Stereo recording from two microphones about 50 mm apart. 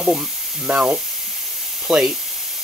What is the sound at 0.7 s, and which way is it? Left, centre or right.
Speech, right.